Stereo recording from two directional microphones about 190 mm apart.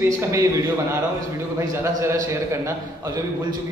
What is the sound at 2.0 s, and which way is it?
Speech, 15° right (ahead or behind).